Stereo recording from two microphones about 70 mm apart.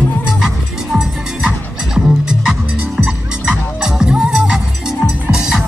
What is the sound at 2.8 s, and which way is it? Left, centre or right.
Croak, centre.